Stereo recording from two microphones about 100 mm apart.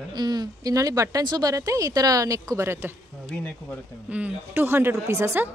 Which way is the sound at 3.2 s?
15° left (ahead or behind).